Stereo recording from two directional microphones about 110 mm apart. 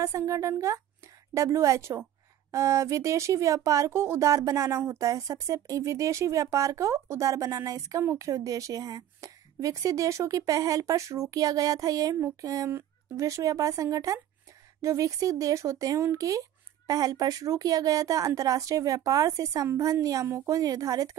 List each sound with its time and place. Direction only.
0.0 s a woman's voice: 30° right (ahead or behind)